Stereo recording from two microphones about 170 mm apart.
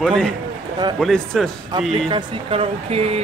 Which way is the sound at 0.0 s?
5° left (ahead or behind).